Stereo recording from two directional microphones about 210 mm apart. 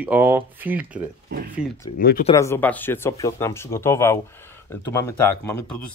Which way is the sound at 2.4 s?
10° left (ahead or behind).